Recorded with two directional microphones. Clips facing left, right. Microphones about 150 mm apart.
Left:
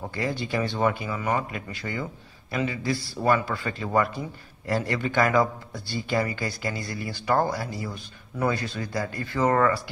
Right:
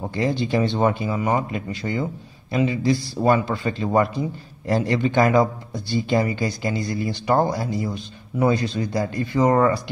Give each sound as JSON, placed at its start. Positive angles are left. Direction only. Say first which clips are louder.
{"t": 0.0, "sound": "speech", "louder": "right 6 dB", "side_deg": -20}